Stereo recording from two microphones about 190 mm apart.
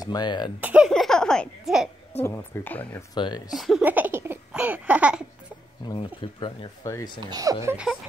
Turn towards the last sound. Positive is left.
turn(degrees=-10)  # may be behind; listen again after turning